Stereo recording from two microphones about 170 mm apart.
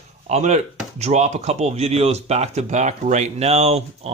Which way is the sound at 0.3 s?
40° right (ahead or behind).